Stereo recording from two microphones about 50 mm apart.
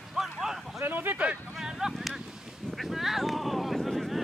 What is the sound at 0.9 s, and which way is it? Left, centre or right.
Speech, right.